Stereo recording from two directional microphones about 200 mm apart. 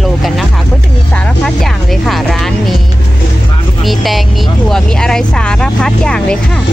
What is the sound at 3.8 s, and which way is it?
Speech, centre (ahead or behind).